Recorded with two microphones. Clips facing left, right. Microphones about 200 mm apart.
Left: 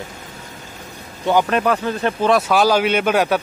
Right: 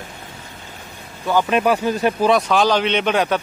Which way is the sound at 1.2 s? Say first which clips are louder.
Left 2 dB; 15° left (ahead or behind).